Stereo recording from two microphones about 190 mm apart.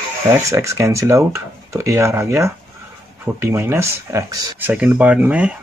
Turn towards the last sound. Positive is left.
turn(degrees=-5)  # may be behind; listen again after turning